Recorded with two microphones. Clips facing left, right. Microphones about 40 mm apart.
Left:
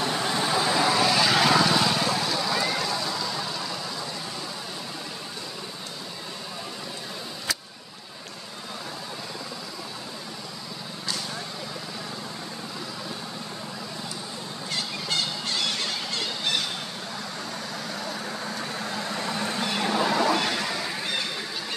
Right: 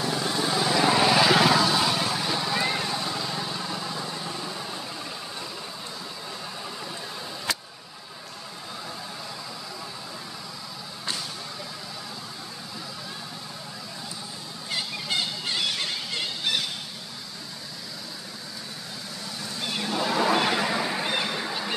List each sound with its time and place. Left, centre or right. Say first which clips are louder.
0.0 s vehicle: left 1 dB; left
0.8 s vehicle: right 5 dB; centre
1.5 s vehicle: left 1 dB; centre
2.1 s vehicle: left 1 dB; right
14.7 s a sound: right 1 dB; centre
18.9 s vehicle: left 9 dB; left
20.1 s vehicle: even; centre